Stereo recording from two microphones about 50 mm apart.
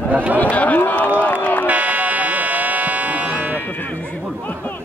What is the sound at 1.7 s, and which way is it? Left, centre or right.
Music, right.